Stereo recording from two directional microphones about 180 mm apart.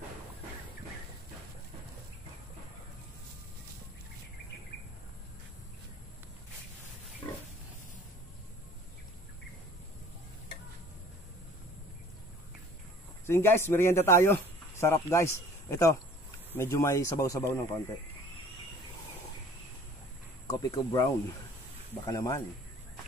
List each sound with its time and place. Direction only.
7.2 s pig: 20° left (ahead or behind)
13.3 s speech: 15° left (ahead or behind)
20.4 s speech: 20° left (ahead or behind)